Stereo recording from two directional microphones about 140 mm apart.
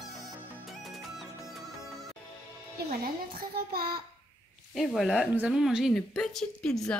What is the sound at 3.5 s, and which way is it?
Child singing, 90° right.